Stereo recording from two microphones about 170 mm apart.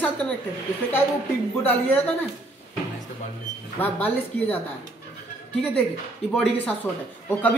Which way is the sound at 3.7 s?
10° left (ahead or behind).